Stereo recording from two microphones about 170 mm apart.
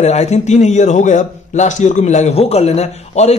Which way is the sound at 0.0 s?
40° left (ahead or behind).